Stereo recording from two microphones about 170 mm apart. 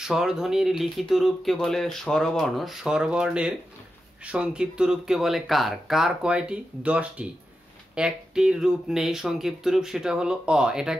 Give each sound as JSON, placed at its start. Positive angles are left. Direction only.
{"t": 0.0, "sound": "speech", "side_deg": -5}